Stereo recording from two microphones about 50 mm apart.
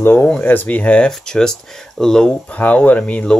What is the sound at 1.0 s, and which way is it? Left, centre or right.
Speech, centre.